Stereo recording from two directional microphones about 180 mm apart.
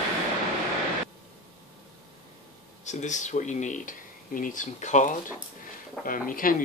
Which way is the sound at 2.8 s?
40° left (ahead or behind).